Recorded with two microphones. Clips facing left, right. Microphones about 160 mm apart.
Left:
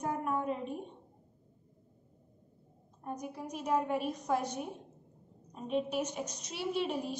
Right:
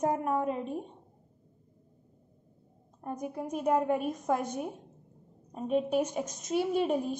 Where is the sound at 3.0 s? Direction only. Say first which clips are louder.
Right 4 dB; 50° right (ahead or behind).